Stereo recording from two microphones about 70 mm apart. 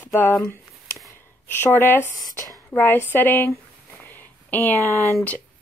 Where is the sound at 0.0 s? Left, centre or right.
Left.